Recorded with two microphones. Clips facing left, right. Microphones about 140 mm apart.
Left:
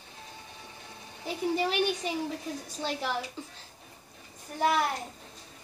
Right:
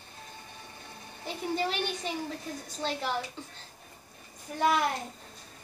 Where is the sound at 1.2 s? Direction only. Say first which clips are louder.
Left 3 dB; 5° left (ahead or behind).